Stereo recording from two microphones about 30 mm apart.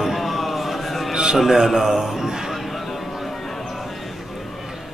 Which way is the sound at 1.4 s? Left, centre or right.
Centre.